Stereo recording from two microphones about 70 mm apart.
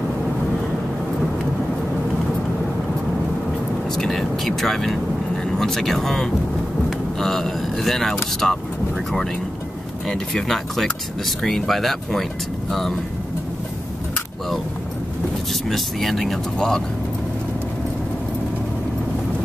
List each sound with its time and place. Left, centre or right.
3.9 s speech: centre
10.0 s speech: centre
15.7 s speech: centre